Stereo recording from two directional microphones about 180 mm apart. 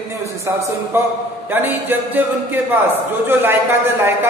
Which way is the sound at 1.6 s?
10° right (ahead or behind).